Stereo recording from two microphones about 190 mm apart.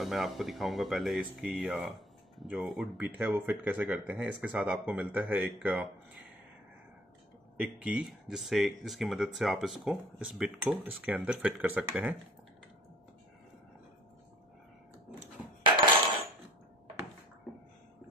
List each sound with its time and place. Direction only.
0.0 s speech: centre (ahead or behind)
7.5 s speech: 5° right (ahead or behind)